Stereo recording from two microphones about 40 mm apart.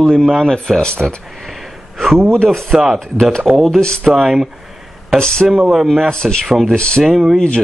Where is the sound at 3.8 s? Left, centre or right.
Centre.